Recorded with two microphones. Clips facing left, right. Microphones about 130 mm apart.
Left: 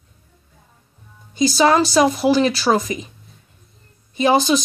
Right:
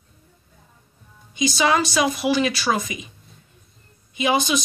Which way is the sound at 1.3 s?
35° left (ahead or behind).